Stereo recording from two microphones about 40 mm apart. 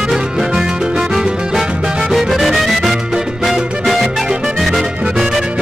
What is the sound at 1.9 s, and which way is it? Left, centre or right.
Music, centre.